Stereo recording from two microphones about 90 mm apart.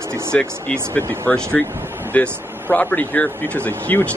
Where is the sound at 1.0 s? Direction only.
30° right (ahead or behind).